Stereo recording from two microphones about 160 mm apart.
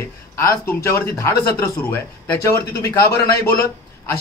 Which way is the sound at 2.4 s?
20° left (ahead or behind).